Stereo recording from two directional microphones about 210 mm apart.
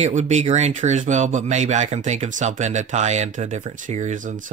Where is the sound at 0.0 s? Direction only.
35° right (ahead or behind).